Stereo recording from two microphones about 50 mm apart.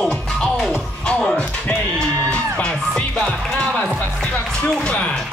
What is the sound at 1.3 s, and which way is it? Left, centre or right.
Music, left.